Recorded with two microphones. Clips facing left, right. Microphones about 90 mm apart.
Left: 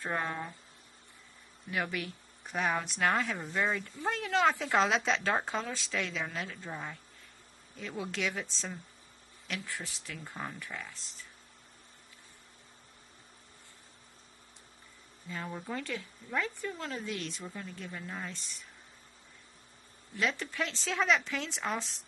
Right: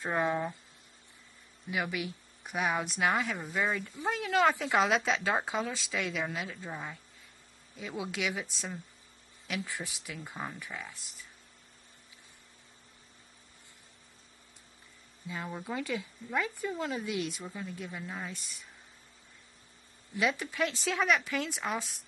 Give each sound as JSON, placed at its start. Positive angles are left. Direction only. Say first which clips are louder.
{"t": 0.0, "sound": "speech", "louder": "right 5 dB", "side_deg": -15}
{"t": 1.7, "sound": "speech", "louder": "right 1 dB", "side_deg": -10}
{"t": 3.9, "sound": "speech", "louder": "right 1 dB", "side_deg": -15}
{"t": 4.2, "sound": "speech", "louder": "right 1 dB", "side_deg": -5}
{"t": 15.2, "sound": "speech", "louder": "right 1 dB", "side_deg": -5}
{"t": 20.2, "sound": "speech", "louder": "right 3 dB", "side_deg": -5}